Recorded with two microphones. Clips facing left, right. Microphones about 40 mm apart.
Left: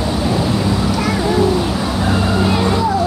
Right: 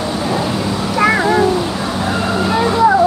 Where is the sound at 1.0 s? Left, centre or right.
Right.